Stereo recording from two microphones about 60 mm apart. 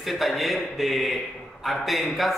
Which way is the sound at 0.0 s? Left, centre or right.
Centre.